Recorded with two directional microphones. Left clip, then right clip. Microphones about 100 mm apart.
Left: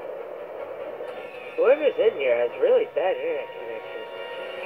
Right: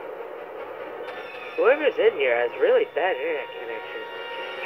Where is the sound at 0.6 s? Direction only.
5° left (ahead or behind).